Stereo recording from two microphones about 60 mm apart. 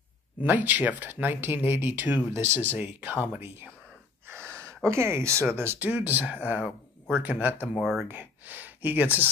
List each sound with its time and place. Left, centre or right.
0.4 s speech: right
2.3 s speech: right
2.6 s speech: right
4.5 s a sound: right
4.8 s speech: right
5.9 s speech: right
7.8 s speech: centre
8.1 s speech: right